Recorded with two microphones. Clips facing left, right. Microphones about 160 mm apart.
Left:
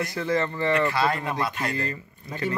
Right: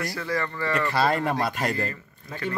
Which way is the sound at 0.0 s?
20° left (ahead or behind).